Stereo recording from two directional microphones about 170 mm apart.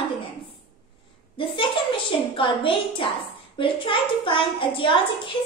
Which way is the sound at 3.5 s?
30° left (ahead or behind).